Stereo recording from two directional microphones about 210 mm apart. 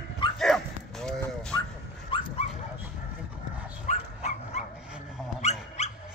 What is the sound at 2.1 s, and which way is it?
Dog, 25° left (ahead or behind).